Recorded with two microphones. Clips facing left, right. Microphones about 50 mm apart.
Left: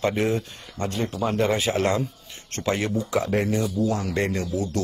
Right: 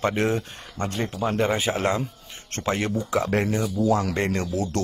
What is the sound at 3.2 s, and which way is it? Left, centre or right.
Speech, right.